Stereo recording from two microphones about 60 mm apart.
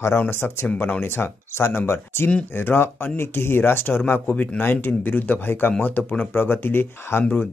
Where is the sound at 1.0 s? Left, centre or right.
Left.